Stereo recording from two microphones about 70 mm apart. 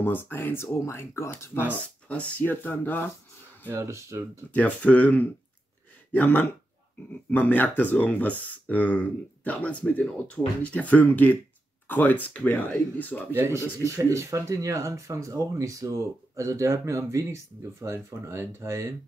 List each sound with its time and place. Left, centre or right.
0.0 s speech: left
1.3 s speech: left
2.0 s speech: centre
3.7 s speech: right
4.5 s speech: left
13.5 s speech: right